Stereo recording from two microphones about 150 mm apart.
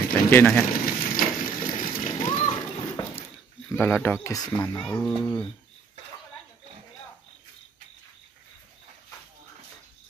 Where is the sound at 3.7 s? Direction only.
15° left (ahead or behind).